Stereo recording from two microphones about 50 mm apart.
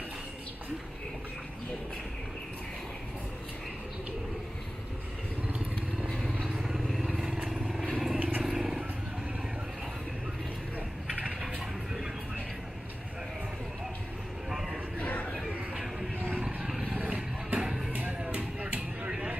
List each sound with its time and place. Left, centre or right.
6.1 s vehicle: centre
6.5 s vehicle: centre
14.5 s a sound: centre
15.0 s chatter: left
15.7 s vehicle: centre
17.1 s music: right
17.9 s a sound: right